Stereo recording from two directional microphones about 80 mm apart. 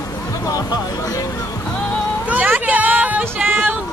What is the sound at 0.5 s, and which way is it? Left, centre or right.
Speech, left.